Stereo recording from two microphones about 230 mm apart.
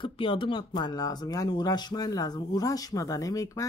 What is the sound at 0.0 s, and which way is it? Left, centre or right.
Speech, left.